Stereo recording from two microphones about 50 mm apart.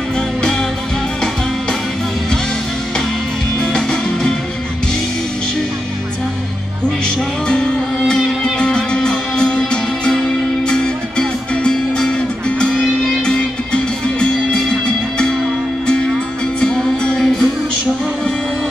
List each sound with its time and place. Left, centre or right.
3.6 s music: centre
7.4 s music: centre
16.5 s music: centre